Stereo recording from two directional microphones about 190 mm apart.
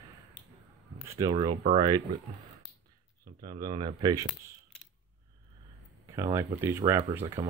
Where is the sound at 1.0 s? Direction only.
15° right (ahead or behind).